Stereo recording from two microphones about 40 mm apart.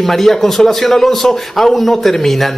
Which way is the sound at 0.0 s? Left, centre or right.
Centre.